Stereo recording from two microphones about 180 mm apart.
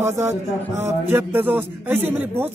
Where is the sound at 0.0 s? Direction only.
15° right (ahead or behind).